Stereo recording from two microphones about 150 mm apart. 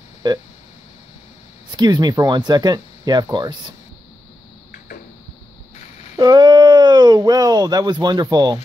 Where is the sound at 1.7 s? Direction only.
25° right (ahead or behind).